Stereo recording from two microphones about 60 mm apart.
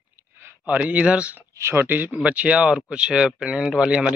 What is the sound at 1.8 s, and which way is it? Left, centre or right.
Speech, right.